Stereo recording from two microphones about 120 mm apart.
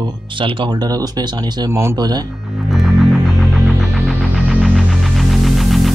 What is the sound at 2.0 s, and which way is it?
Speech, 35° right (ahead or behind).